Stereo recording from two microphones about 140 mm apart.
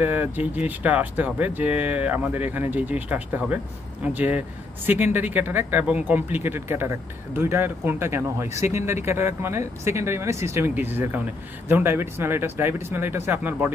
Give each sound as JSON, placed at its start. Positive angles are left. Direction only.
{"t": 0.0, "sound": "speech", "side_deg": -15}